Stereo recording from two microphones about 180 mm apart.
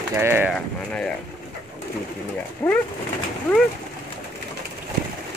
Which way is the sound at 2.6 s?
15° left (ahead or behind).